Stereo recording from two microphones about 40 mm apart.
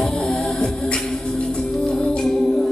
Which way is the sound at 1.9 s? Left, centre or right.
Left.